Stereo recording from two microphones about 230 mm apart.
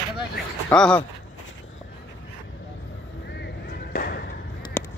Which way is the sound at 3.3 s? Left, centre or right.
Left.